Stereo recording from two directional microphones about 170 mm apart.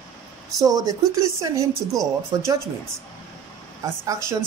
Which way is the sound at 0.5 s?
20° right (ahead or behind).